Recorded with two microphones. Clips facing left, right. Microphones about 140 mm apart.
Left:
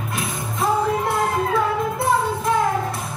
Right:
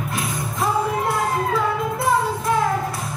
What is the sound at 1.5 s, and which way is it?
Music, 25° left (ahead or behind).